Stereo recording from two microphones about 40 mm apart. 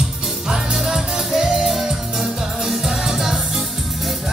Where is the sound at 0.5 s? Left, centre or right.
Centre.